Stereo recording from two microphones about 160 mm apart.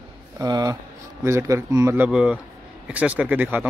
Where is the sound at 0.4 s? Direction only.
25° right (ahead or behind).